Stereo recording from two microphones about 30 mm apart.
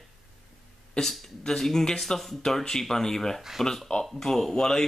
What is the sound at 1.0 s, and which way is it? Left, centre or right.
Speech, left.